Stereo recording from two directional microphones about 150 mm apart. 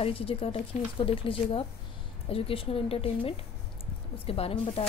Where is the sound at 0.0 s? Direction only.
40° left (ahead or behind).